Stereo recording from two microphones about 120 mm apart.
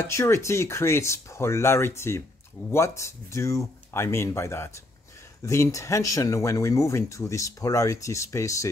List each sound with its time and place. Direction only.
0.0 s speech: 25° left (ahead or behind)